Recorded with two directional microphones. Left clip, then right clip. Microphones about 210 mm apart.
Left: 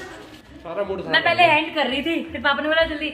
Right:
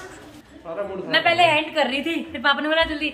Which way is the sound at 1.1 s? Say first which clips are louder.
Left 1 dB; centre (ahead or behind).